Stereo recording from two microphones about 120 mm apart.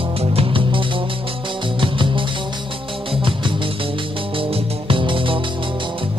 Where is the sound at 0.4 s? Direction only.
45° right (ahead or behind).